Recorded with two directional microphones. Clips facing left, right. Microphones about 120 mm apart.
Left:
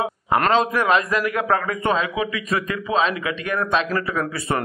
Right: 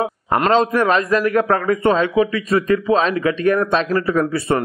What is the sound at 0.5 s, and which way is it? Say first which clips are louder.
A man's voice: right 4 dB; 35° right (ahead or behind).